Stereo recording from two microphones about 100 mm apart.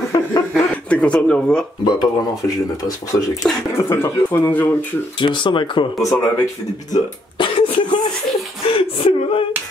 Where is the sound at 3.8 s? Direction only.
25° left (ahead or behind).